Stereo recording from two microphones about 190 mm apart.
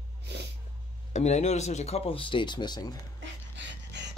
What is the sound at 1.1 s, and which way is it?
Speech, 40° left (ahead or behind).